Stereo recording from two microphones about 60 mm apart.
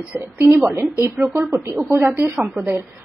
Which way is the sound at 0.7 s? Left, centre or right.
Right.